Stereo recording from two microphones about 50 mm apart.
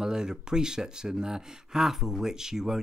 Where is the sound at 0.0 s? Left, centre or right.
Centre.